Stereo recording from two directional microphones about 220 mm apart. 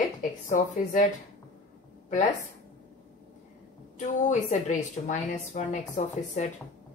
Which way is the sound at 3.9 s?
35° left (ahead or behind).